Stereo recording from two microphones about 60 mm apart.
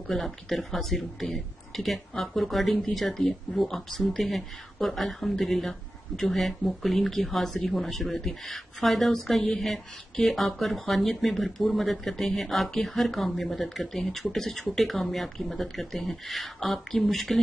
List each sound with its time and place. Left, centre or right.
0.1 s speech: centre